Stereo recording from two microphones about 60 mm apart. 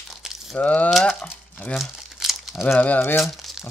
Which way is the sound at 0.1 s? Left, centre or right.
Centre.